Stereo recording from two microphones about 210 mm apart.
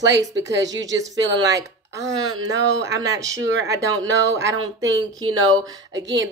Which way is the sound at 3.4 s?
60° right (ahead or behind).